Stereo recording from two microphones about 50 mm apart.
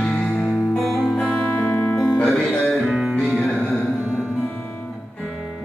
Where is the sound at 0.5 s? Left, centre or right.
Centre.